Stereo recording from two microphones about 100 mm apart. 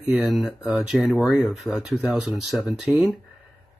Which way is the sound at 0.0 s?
10° right (ahead or behind).